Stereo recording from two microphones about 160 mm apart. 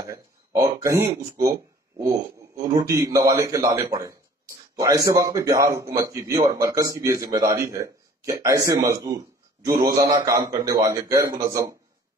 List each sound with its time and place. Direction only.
0.1 s a man's voice: 20° right (ahead or behind)
9.9 s a man's voice: 20° right (ahead or behind)